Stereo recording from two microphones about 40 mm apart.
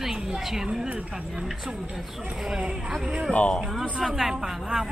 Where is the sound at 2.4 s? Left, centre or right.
Centre.